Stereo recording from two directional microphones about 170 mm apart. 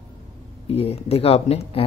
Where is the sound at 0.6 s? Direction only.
35° left (ahead or behind).